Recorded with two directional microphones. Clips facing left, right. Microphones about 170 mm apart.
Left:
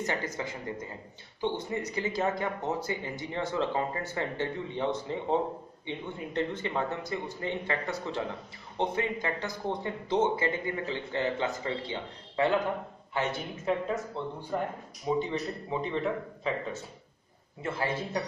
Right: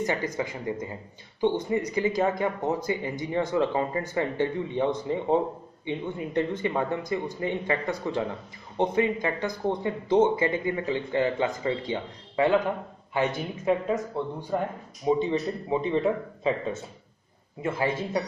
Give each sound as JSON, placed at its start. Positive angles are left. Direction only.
{"t": 0.0, "sound": "a man's voice", "side_deg": -15}